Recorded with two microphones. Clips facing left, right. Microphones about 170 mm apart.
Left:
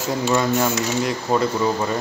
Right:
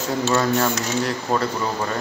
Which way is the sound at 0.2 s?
15° left (ahead or behind).